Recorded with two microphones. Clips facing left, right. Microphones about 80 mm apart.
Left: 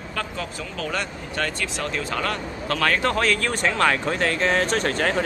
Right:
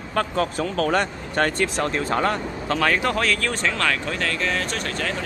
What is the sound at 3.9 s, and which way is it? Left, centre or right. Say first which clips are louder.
Speech: left 2 dB; left.